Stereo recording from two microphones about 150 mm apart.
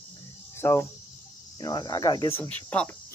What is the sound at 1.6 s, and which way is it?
Cricket, 25° left (ahead or behind).